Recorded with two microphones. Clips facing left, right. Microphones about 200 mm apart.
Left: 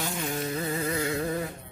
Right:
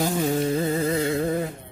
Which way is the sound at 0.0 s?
35° right (ahead or behind).